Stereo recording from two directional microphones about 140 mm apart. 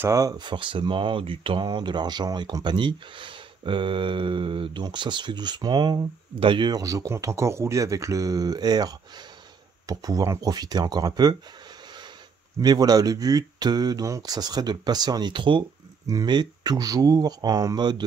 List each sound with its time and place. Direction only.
0.0 s speech: 25° right (ahead or behind)
12.5 s speech: 25° right (ahead or behind)